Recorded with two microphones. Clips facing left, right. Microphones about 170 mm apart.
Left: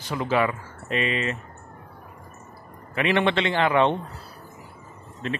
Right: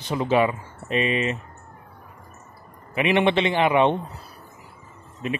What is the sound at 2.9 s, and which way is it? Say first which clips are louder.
A man's voice: right 2 dB; 15° right (ahead or behind).